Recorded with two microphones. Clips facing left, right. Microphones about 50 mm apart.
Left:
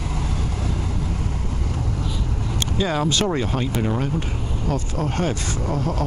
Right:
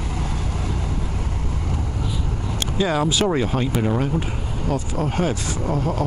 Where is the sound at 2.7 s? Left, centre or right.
Centre.